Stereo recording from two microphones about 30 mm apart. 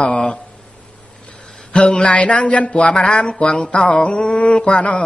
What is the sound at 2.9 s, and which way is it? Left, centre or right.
Speech, left.